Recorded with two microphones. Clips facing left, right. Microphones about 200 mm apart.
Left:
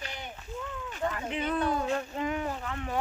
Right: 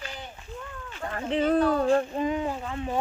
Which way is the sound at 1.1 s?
35° right (ahead or behind).